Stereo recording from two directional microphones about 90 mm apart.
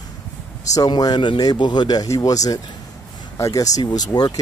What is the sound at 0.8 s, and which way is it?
Speech, 55° left (ahead or behind).